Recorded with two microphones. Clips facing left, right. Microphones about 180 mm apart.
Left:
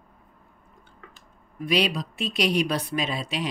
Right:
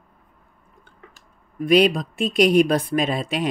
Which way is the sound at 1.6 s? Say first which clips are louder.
Right 8 dB; 50° right (ahead or behind).